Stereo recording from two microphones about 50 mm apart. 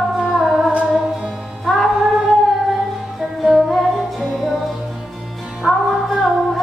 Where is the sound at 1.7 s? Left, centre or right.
Centre.